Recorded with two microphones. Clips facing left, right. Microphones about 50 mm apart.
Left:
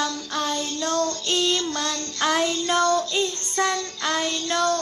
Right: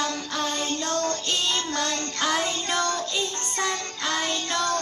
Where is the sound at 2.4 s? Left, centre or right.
Right.